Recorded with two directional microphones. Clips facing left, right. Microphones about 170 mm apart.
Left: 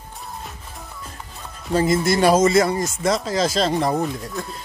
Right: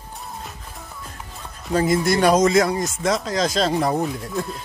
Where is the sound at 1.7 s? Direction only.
Centre (ahead or behind).